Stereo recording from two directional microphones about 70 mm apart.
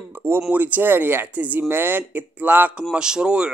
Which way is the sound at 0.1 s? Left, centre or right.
Right.